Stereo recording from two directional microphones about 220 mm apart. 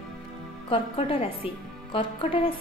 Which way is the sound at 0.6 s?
25° left (ahead or behind).